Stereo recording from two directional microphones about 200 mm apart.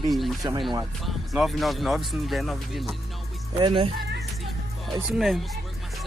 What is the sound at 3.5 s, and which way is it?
Speech, 25° right (ahead or behind).